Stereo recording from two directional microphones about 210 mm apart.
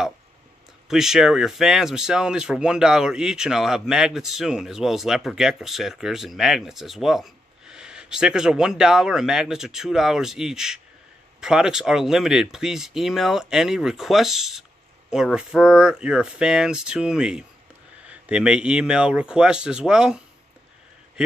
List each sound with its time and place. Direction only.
0.8 s speech: centre (ahead or behind)